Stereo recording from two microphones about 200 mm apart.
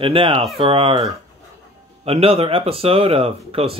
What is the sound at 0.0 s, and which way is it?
Speech, 25° right (ahead or behind).